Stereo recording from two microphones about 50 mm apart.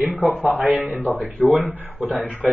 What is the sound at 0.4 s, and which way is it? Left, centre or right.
Speech, right.